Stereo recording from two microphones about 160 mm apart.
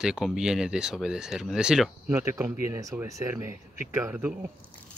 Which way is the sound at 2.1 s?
15° right (ahead or behind).